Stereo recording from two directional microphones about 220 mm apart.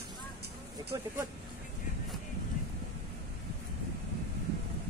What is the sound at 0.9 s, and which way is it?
Speech, 15° right (ahead or behind).